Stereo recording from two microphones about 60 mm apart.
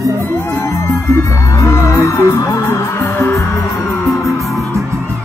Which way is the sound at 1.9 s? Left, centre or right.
Left.